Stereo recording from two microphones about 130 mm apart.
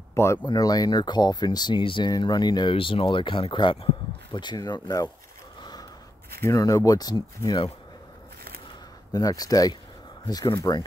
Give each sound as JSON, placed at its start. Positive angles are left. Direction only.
{"t": 0.1, "sound": "speech", "side_deg": 20}
{"t": 5.6, "sound": "snort", "side_deg": 30}
{"t": 6.4, "sound": "speech", "side_deg": 25}
{"t": 9.1, "sound": "speech", "side_deg": 30}